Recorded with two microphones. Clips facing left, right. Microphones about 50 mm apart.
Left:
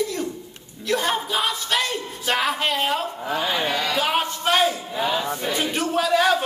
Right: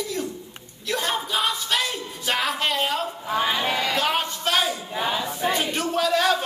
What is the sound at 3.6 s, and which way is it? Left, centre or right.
Speech, right.